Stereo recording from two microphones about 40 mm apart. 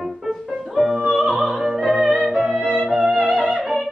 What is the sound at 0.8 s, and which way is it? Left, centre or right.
Opera, centre.